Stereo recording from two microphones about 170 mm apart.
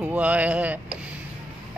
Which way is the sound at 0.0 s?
10° right (ahead or behind).